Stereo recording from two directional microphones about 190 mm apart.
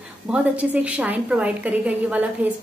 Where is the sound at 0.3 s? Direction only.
5° right (ahead or behind).